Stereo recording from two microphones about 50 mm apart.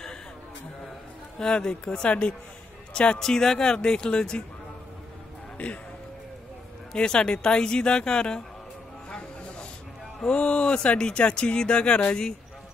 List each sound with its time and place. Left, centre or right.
1.4 s a man's voice: centre
3.2 s a woman's voice: centre
6.9 s a woman's voice: centre
9.1 s snake: centre
10.2 s a woman's voice: left